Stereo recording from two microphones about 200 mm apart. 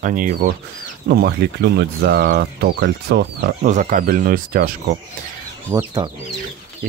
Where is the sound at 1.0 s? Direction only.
55° right (ahead or behind).